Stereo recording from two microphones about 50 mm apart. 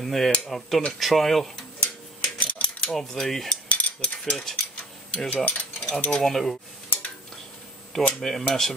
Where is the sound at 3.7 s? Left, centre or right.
Left.